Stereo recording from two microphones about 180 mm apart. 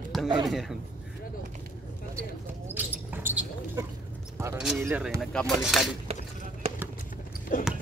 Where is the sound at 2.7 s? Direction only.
10° right (ahead or behind).